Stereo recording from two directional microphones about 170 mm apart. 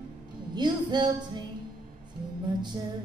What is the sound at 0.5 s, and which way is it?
Music, 25° right (ahead or behind).